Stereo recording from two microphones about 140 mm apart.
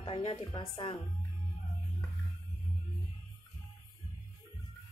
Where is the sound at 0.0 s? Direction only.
40° left (ahead or behind).